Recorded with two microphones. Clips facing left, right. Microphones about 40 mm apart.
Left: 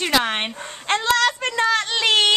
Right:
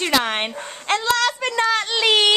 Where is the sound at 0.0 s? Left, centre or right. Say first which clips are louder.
Even; centre.